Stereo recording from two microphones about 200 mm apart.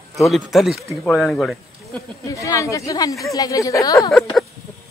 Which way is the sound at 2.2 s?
15° left (ahead or behind).